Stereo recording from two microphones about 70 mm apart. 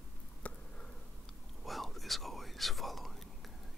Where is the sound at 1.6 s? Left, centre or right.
Centre.